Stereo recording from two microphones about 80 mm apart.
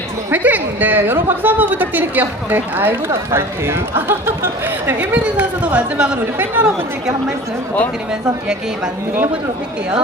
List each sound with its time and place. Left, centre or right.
0.3 s a woman's voice: right
6.3 s a woman's voice: right